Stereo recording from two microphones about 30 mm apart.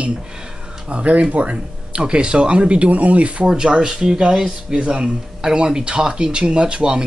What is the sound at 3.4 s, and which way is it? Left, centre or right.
Speech, right.